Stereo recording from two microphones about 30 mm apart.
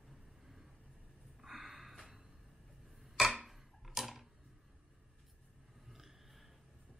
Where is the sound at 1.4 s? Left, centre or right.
Centre.